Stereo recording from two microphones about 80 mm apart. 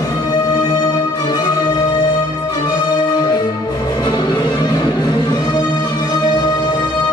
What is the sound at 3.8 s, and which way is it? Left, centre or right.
Music, left.